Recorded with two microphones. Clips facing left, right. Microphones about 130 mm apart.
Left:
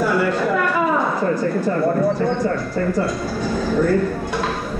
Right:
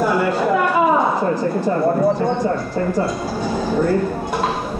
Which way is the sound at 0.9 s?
20° right (ahead or behind).